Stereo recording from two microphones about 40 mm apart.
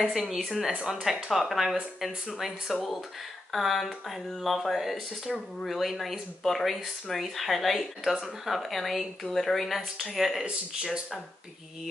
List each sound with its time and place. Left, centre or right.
0.1 s speech: centre
10.8 s speech: centre